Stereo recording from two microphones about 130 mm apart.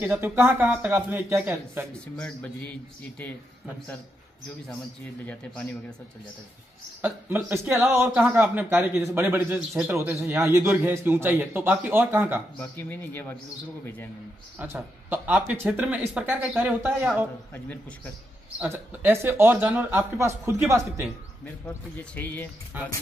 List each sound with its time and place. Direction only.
0.0 s speech: 15° right (ahead or behind)
2.1 s speech: 10° left (ahead or behind)
5.2 s speech: 10° left (ahead or behind)
7.0 s speech: 15° right (ahead or behind)
12.5 s speech: 15° left (ahead or behind)
14.6 s speech: 15° right (ahead or behind)
18.6 s speech: 15° right (ahead or behind)
21.6 s speech: 10° left (ahead or behind)
22.7 s speech: 15° right (ahead or behind)